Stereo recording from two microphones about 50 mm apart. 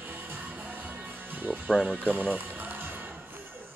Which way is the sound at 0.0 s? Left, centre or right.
Right.